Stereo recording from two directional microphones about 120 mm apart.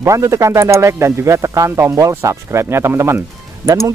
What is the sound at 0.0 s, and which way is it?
Speech, 25° right (ahead or behind).